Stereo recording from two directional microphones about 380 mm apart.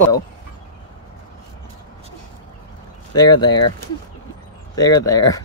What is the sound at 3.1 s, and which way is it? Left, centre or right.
Speech, centre.